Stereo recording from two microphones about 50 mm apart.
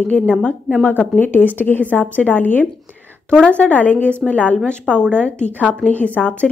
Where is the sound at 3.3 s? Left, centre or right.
Left.